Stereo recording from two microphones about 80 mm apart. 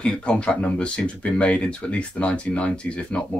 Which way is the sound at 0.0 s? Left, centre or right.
Centre.